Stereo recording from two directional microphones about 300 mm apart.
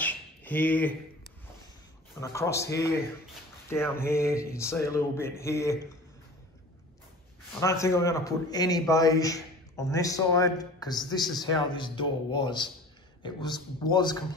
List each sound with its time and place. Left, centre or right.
0.0 s a sound: centre
2.1 s a man's voice: centre
3.6 s a man's voice: centre
7.6 s a man's voice: centre